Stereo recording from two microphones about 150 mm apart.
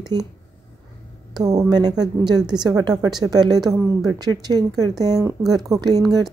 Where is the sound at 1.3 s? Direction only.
25° right (ahead or behind).